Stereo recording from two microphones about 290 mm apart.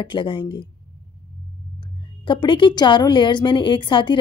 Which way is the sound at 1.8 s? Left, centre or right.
Centre.